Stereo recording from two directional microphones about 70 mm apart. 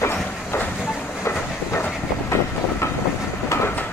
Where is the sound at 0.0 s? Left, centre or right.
Left.